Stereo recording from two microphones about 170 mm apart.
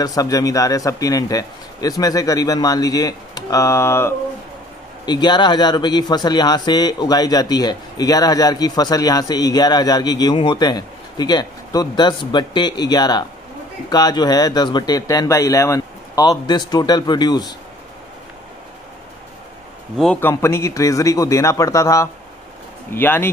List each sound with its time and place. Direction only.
0.0 s speech: 20° left (ahead or behind)
20.0 s speech: 10° left (ahead or behind)